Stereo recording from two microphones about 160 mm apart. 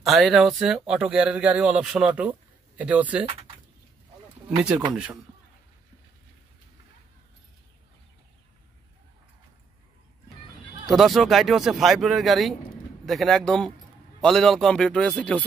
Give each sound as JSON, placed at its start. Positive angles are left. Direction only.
{"t": 0.0, "sound": "speech", "side_deg": 0}
{"t": 4.6, "sound": "speech", "side_deg": -5}
{"t": 10.9, "sound": "speech", "side_deg": 0}